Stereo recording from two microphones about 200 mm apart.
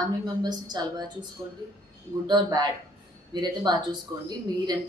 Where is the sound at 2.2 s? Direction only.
20° right (ahead or behind).